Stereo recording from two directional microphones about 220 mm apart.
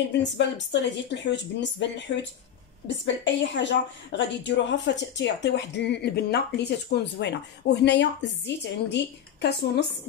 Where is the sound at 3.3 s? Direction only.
55° left (ahead or behind).